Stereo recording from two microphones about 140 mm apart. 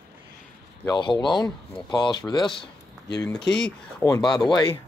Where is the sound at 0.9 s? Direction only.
35° left (ahead or behind).